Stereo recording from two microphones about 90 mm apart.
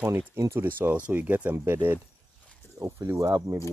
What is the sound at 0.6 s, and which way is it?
Speech, 20° right (ahead or behind).